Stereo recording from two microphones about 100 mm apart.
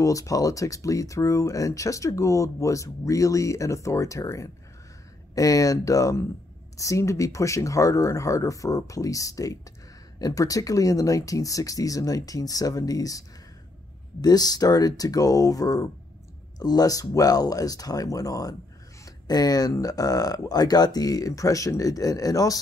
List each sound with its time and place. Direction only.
0.0 s speech: 35° left (ahead or behind)
14.2 s speech: 40° left (ahead or behind)